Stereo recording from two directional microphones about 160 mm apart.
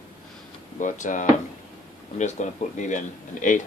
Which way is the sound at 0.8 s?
55° left (ahead or behind).